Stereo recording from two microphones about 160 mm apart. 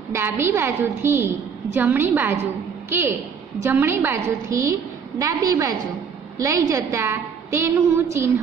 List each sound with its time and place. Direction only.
0.1 s a woman's voice: 15° right (ahead or behind)